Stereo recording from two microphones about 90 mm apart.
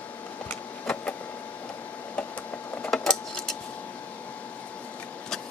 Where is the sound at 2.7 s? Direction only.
5° left (ahead or behind).